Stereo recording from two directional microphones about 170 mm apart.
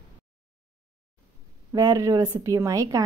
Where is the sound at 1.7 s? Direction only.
25° right (ahead or behind).